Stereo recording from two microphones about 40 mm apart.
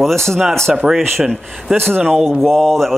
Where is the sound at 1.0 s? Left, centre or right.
Centre.